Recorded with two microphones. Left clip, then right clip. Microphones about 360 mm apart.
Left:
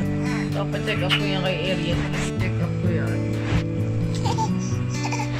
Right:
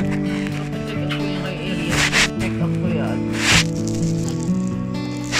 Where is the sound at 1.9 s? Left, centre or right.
Right.